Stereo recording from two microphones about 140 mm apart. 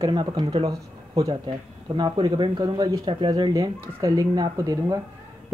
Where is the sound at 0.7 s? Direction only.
25° right (ahead or behind).